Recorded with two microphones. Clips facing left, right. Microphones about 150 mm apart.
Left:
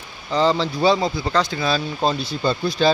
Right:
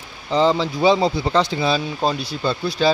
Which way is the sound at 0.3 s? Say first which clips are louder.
Right 1 dB; 15° right (ahead or behind).